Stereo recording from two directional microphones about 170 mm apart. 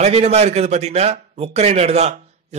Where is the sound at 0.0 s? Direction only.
40° right (ahead or behind).